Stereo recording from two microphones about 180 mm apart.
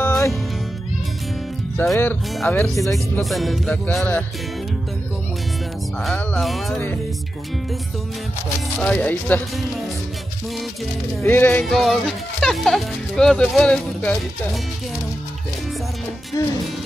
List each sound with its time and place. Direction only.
1.8 s speech: 10° left (ahead or behind)
3.3 s speech: centre (ahead or behind)
6.0 s speech: centre (ahead or behind)
8.7 s speech: 5° left (ahead or behind)
11.2 s speech: 10° left (ahead or behind)
11.6 s speech: centre (ahead or behind)
16.4 s speech: 15° left (ahead or behind)